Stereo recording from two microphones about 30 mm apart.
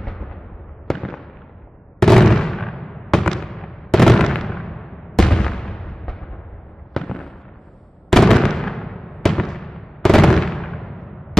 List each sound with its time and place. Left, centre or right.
0.0 s fireworks: centre
2.0 s gunshot: centre
2.9 s fireworks: centre
5.2 s artillery fire: left
5.9 s timpani: centre
6.9 s fireworks: centre